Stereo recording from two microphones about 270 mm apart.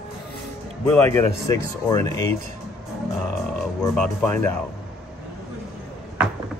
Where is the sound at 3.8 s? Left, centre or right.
Centre.